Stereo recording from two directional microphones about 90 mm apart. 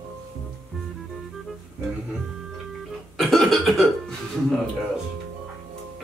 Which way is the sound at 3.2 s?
Centre (ahead or behind).